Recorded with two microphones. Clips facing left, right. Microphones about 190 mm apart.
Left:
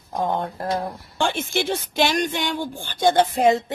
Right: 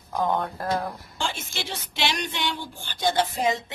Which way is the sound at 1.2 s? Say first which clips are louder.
Left 10 dB; 60° left (ahead or behind).